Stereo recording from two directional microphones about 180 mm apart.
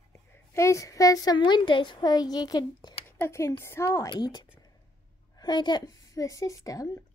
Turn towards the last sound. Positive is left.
turn(degrees=20)  # may be behind; listen again after turning